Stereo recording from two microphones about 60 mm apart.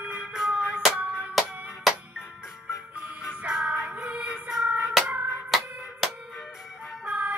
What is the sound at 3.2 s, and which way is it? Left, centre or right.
Music, centre.